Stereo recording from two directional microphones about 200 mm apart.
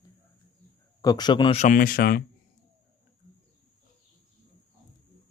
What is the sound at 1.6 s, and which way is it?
Speech, 45° left (ahead or behind).